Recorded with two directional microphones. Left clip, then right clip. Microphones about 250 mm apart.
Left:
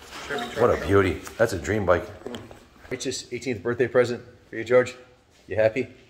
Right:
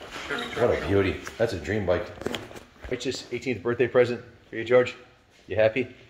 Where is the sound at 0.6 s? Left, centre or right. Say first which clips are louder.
Left 3 dB; centre.